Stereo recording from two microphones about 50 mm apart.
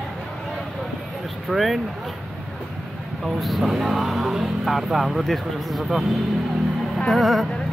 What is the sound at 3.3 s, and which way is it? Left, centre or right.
Speech, centre.